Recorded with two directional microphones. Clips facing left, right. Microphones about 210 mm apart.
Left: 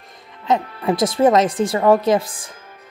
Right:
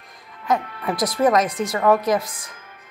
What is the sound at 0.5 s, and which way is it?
Speech, 25° left (ahead or behind).